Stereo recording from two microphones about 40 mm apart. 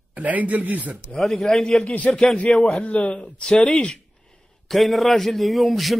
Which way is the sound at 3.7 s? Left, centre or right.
Left.